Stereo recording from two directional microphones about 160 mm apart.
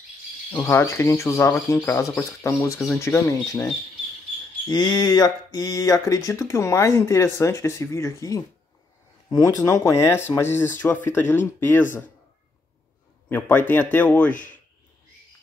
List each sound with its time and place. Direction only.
0.5 s speech: 15° left (ahead or behind)
4.6 s speech: 25° left (ahead or behind)
13.3 s speech: 10° left (ahead or behind)